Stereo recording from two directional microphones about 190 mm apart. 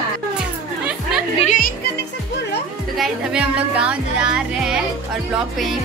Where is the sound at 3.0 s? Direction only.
5° right (ahead or behind).